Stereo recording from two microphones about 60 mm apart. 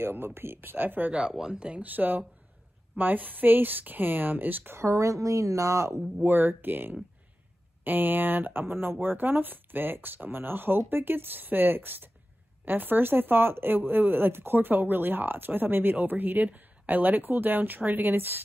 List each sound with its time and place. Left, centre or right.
0.0 s speech: right
1.1 s speech: centre; by 4.7 s right
4.7 s a woman's voice: right
6.2 s speech: right